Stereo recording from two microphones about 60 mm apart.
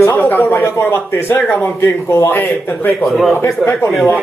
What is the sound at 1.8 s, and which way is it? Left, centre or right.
Speech, left.